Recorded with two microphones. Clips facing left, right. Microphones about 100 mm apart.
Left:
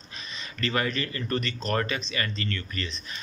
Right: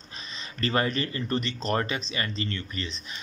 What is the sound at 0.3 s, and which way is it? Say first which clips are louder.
Speech: right 2 dB; 30° right (ahead or behind).